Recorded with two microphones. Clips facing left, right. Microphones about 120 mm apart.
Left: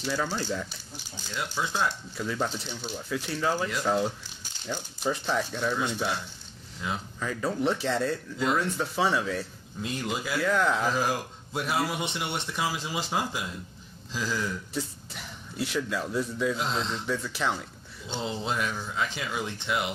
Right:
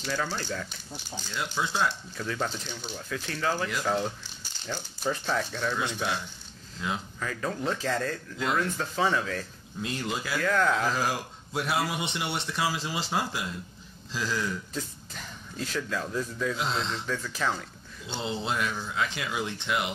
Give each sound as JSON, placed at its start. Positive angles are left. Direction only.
{"t": 0.0, "sound": "speech", "side_deg": 10}
{"t": 7.2, "sound": "speech", "side_deg": 10}
{"t": 11.0, "sound": "speech", "side_deg": -5}
{"t": 12.6, "sound": "speech", "side_deg": 0}
{"t": 18.0, "sound": "speech", "side_deg": 0}